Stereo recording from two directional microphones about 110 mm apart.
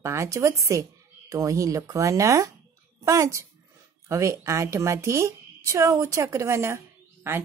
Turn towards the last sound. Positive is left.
turn(degrees=-25)  # may be behind; listen again after turning